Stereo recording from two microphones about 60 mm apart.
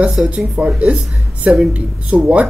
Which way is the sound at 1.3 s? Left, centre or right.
Right.